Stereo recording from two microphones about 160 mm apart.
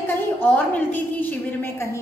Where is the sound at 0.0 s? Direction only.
10° left (ahead or behind).